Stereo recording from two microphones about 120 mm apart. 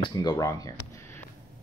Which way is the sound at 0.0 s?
35° left (ahead or behind).